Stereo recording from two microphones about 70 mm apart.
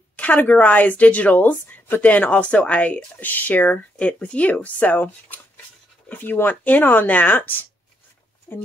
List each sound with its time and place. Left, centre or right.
0.1 s a woman's voice: left